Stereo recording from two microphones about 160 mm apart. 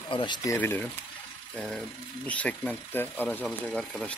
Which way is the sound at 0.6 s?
10° left (ahead or behind).